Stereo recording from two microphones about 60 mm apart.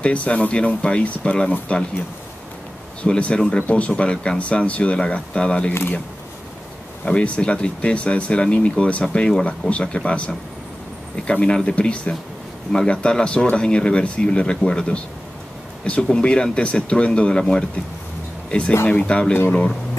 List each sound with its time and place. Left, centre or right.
0.0 s speech: left
3.0 s speech: centre
7.1 s speech: centre
18.9 s speech: centre